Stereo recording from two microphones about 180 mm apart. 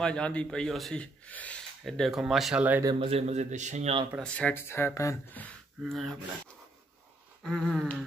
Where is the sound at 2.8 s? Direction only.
30° right (ahead or behind).